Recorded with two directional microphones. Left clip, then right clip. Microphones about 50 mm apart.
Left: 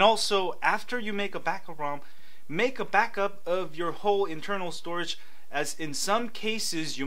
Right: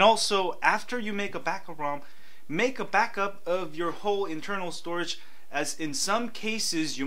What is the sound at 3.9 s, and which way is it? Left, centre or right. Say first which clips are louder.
Speech: left 4 dB; right.